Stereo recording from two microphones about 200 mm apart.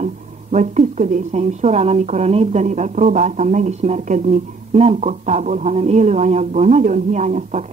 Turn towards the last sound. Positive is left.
turn(degrees=-35)  # may be behind; listen again after turning